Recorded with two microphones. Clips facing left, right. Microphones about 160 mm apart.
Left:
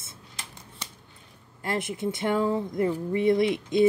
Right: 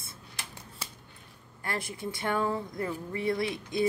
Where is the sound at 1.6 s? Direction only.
20° left (ahead or behind).